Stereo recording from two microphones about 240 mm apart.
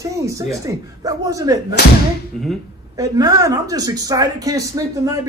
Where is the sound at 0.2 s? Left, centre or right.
Centre.